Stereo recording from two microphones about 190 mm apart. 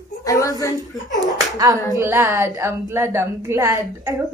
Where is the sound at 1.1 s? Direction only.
20° right (ahead or behind).